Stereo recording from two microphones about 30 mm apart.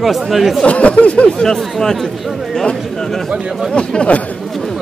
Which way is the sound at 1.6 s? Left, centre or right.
Centre.